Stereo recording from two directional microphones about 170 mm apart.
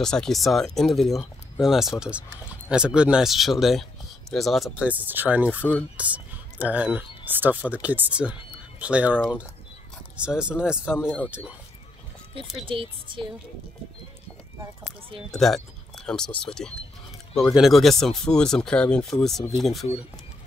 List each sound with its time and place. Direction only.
0.0 s speech: 5° left (ahead or behind)
12.6 s speech: 30° right (ahead or behind)
15.3 s speech: centre (ahead or behind)